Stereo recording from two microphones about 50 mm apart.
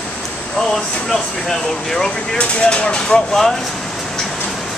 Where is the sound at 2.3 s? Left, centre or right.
Left.